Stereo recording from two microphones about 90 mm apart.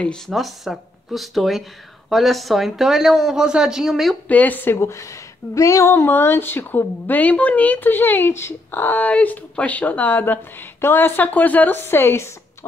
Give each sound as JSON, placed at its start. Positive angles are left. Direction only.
{"t": 0.0, "sound": "speech", "side_deg": 5}
{"t": 4.3, "sound": "speech", "side_deg": 20}
{"t": 4.7, "sound": "speech", "side_deg": 35}